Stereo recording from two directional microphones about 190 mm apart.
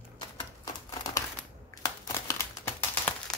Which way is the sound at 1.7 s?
20° left (ahead or behind).